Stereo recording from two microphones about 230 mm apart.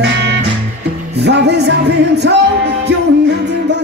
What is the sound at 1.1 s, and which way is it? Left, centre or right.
Music, right.